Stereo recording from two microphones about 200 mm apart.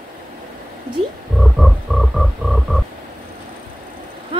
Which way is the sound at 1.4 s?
Centre (ahead or behind).